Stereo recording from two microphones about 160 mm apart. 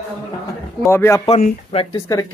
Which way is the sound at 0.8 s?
15° left (ahead or behind).